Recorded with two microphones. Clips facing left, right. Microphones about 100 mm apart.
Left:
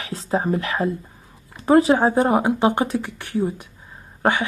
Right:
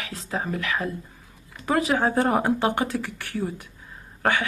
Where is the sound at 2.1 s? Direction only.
15° left (ahead or behind).